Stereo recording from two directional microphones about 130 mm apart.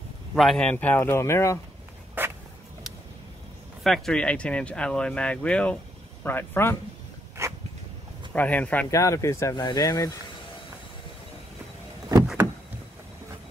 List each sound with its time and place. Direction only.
0.3 s speech: centre (ahead or behind); by 1.6 s 20° left (ahead or behind)
2.2 s a sound: 15° right (ahead or behind)
3.8 s speech: centre (ahead or behind); by 6.8 s 20° left (ahead or behind)
7.4 s a sound: 20° right (ahead or behind)
8.3 s speech: 10° left (ahead or behind)
8.9 s speech: 25° left (ahead or behind)